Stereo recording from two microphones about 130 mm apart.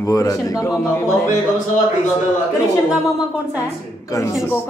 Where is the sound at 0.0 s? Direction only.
25° left (ahead or behind).